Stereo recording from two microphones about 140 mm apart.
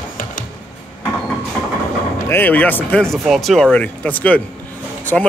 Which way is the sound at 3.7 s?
10° left (ahead or behind).